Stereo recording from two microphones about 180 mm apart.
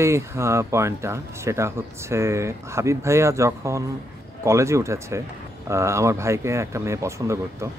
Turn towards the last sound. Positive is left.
turn(degrees=-15)  # may be behind; listen again after turning